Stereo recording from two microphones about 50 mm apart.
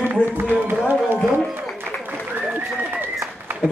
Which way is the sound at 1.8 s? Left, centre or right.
Right.